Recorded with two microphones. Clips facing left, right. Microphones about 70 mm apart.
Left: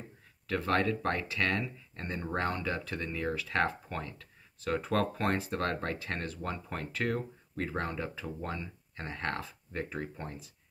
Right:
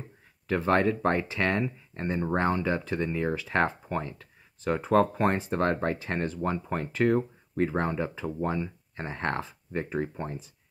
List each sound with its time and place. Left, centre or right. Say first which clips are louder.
0.5 s speech: right 5 dB; right